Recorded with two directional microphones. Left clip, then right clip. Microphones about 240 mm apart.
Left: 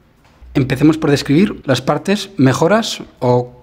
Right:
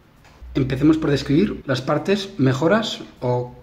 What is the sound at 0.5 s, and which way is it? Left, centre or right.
Speech, left.